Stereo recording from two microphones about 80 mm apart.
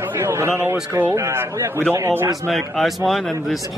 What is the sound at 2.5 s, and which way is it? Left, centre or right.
Speech, centre.